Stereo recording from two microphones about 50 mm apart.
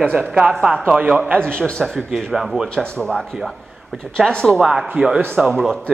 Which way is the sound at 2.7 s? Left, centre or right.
Centre.